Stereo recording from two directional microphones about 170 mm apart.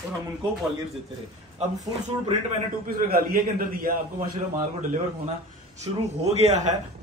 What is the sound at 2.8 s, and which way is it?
A man's voice, 60° right (ahead or behind).